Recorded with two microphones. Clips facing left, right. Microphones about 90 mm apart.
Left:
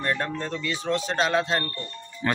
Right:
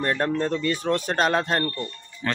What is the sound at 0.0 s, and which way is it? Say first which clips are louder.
Speech: right 4 dB; 35° right (ahead or behind).